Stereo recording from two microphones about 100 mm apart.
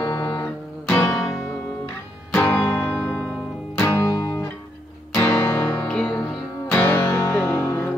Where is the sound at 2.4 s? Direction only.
15° left (ahead or behind).